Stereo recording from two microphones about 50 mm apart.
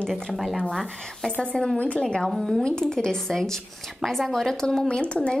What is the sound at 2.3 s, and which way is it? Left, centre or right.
A woman's voice, centre.